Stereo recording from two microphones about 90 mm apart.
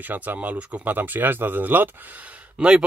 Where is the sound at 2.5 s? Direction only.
10° right (ahead or behind).